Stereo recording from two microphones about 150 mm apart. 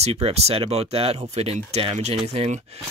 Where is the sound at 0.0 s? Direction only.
45° right (ahead or behind).